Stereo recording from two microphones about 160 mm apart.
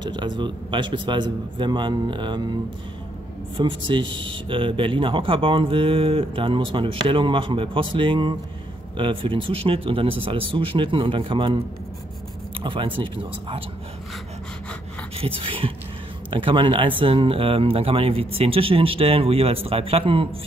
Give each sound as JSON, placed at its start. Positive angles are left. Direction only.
{"t": 0.0, "sound": "speech", "side_deg": -30}
{"t": 12.6, "sound": "speech", "side_deg": -30}
{"t": 15.1, "sound": "speech", "side_deg": -35}